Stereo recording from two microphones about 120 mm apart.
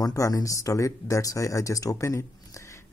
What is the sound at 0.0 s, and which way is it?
Speech, 30° left (ahead or behind).